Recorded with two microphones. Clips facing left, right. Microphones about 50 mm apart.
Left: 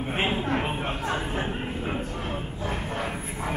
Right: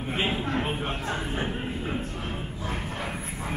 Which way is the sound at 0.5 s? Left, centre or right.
Left.